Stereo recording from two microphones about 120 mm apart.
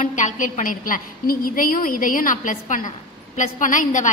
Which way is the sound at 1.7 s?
90° left.